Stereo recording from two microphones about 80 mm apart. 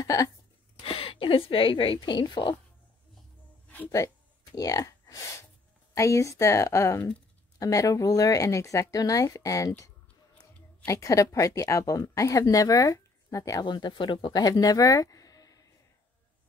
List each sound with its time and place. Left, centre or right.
0.0 s speech: left
1.1 s a woman's voice: left
3.6 s a sound: left
4.6 s a woman's voice: left
10.9 s speech: left
13.7 s speech: left
14.4 s speech: left